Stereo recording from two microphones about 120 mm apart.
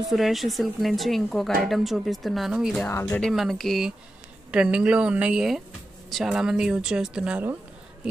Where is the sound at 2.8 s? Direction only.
20° left (ahead or behind).